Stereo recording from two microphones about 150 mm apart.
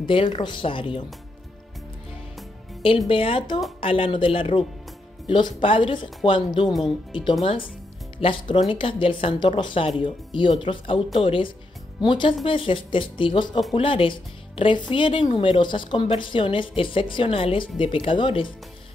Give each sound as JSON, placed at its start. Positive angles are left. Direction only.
{"t": 0.0, "sound": "a woman's voice", "side_deg": 35}
{"t": 3.1, "sound": "a woman's voice", "side_deg": 35}